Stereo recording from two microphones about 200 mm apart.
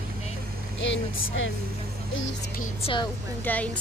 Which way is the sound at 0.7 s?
70° left (ahead or behind).